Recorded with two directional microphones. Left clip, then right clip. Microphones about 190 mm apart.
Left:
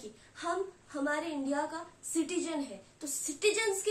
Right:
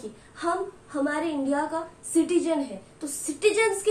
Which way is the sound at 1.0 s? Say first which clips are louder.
Right 6 dB; 15° left (ahead or behind).